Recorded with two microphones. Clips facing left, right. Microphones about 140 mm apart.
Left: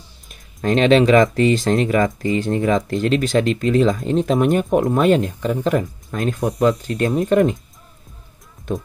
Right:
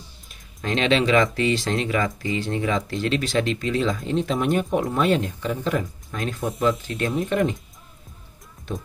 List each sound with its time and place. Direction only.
0.3 s speech: 45° left (ahead or behind)